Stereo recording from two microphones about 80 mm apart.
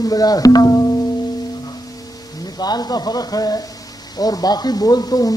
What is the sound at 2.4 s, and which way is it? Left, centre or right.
Speech, left.